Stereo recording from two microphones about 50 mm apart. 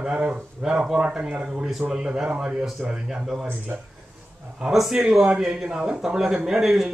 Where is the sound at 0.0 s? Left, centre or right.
Right.